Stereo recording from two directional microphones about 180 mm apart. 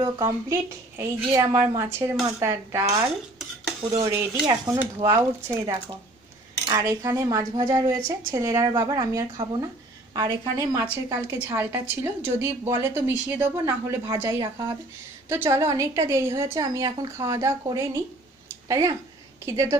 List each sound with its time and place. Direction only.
0.0 s a woman's voice: 20° right (ahead or behind)